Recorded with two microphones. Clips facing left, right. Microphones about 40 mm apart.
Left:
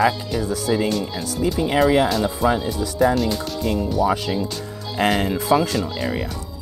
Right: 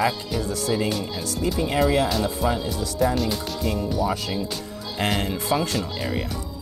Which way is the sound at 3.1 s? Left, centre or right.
Centre.